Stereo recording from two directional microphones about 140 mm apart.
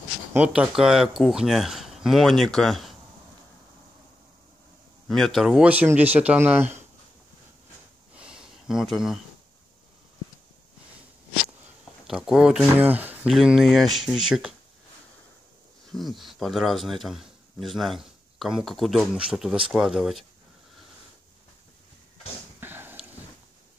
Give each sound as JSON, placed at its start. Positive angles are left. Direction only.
{"t": 0.3, "sound": "speech", "side_deg": -10}
{"t": 5.0, "sound": "speech", "side_deg": 0}
{"t": 8.2, "sound": "a sound", "side_deg": -5}
{"t": 12.1, "sound": "speech", "side_deg": -5}
{"t": 15.9, "sound": "speech", "side_deg": 0}
{"t": 22.6, "sound": "a sound", "side_deg": -15}